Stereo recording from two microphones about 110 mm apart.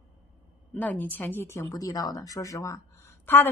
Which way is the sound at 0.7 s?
15° left (ahead or behind).